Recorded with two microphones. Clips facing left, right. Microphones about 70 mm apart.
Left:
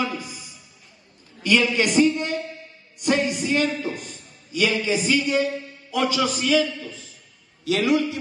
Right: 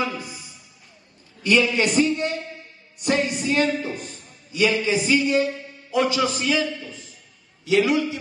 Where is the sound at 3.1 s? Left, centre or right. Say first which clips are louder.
Even; left.